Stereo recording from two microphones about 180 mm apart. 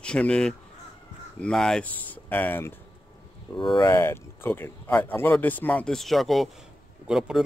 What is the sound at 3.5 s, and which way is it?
Speech, 25° left (ahead or behind).